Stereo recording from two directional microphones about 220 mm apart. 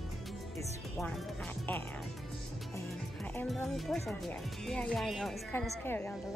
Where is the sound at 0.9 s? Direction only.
5° left (ahead or behind).